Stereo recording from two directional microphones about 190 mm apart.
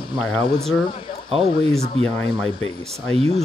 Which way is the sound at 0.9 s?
25° left (ahead or behind).